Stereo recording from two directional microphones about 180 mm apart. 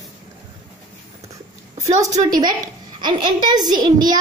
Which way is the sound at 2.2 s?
50° right (ahead or behind).